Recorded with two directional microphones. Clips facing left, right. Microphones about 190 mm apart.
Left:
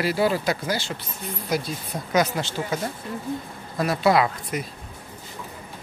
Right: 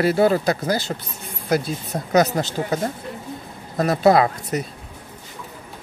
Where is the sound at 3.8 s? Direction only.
40° right (ahead or behind).